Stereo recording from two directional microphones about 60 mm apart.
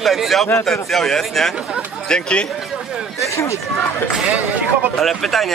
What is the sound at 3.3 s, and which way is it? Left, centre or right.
Speech, left.